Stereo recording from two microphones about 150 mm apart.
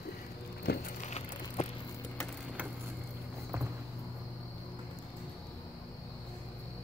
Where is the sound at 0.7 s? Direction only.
90° left.